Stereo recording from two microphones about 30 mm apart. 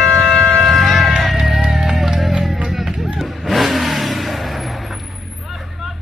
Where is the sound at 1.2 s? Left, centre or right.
Centre.